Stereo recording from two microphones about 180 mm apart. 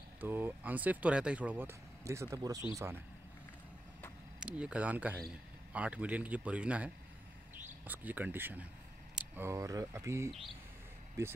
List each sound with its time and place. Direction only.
0.2 s speech: 10° right (ahead or behind)
4.4 s speech: 5° right (ahead or behind)